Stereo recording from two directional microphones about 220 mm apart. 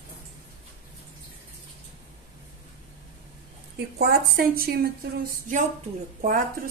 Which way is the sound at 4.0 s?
45° right (ahead or behind).